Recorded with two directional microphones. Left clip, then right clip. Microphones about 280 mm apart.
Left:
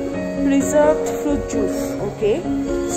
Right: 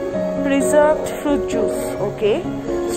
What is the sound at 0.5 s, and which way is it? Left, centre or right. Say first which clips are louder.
Speech: right 1 dB; centre.